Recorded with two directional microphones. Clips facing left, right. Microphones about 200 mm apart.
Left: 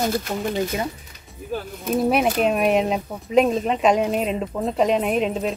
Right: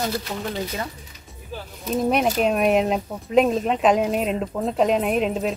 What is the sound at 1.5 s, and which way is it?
Speech, 55° left (ahead or behind).